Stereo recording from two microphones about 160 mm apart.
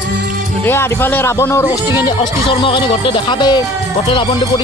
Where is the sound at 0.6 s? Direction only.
15° left (ahead or behind).